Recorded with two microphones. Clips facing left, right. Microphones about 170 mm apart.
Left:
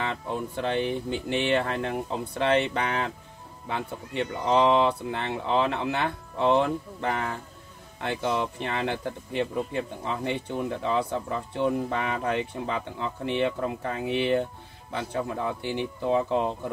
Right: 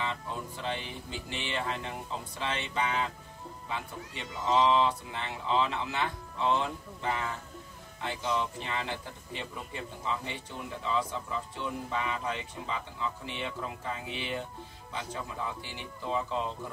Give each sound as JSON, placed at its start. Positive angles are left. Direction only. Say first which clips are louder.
{"t": 0.0, "sound": "speech", "louder": "left 6 dB", "side_deg": 65}